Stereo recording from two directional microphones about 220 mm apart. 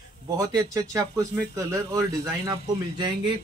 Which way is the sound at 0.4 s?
15° right (ahead or behind).